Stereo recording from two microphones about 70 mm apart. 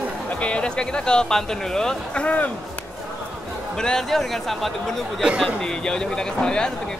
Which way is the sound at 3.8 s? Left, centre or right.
Centre.